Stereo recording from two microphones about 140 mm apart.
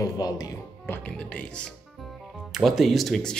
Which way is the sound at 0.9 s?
10° left (ahead or behind).